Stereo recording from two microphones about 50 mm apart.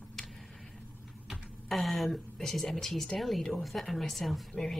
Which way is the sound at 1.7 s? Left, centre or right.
Centre.